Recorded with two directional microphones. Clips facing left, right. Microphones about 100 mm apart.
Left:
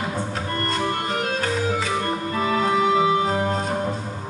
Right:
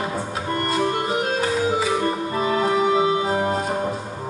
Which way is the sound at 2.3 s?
25° right (ahead or behind).